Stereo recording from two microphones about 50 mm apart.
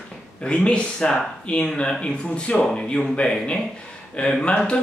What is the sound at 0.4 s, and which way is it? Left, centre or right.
Speech, centre.